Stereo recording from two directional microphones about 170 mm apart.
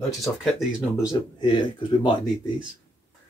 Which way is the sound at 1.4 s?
25° left (ahead or behind).